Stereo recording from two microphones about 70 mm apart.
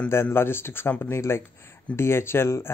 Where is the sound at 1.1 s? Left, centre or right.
Left.